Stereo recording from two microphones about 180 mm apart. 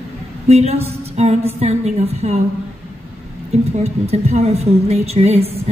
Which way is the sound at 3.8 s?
35° right (ahead or behind).